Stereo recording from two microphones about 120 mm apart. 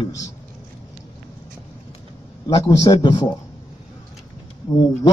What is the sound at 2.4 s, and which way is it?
Speech, 30° left (ahead or behind).